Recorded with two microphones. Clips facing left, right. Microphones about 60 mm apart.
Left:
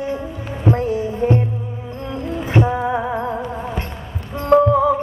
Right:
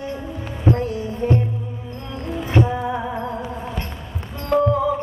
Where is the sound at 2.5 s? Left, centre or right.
Left.